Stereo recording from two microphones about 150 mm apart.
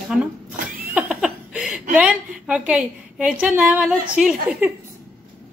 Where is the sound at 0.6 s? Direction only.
70° right (ahead or behind).